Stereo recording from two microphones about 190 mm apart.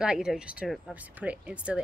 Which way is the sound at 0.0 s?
5° right (ahead or behind).